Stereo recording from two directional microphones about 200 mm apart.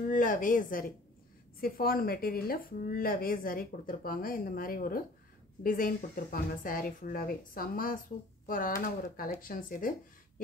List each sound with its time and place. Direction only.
0.1 s a woman's voice: 40° left (ahead or behind)